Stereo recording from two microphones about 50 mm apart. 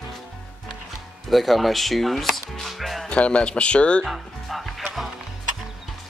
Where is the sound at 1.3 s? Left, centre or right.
Centre.